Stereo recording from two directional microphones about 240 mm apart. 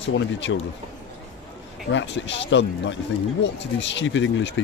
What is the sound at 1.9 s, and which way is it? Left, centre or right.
Speech, left.